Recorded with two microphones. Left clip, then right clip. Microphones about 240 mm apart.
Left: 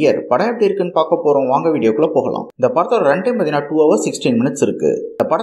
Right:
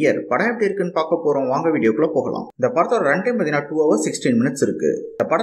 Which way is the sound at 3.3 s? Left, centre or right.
Centre.